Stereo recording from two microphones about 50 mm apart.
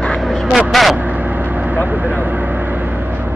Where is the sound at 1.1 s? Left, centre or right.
Right.